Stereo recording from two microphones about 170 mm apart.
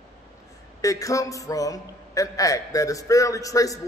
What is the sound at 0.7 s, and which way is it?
A man's voice, 20° left (ahead or behind).